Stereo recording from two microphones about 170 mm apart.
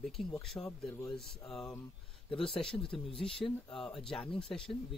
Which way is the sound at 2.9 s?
35° left (ahead or behind).